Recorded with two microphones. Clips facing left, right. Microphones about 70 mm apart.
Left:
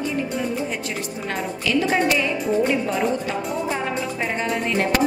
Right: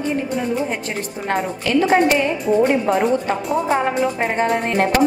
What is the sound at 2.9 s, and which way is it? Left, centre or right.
Speech, right.